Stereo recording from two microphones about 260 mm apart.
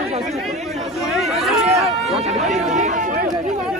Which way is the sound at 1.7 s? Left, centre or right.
Centre.